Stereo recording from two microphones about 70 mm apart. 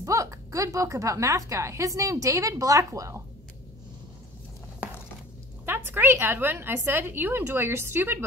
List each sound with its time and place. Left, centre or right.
0.0 s a woman's voice: right
5.7 s a woman's voice: right